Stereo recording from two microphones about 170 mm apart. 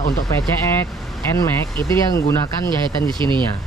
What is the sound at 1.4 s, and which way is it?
Speech, 20° left (ahead or behind).